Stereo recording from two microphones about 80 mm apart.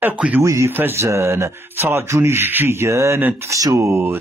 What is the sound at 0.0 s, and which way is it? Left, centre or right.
Speech, centre.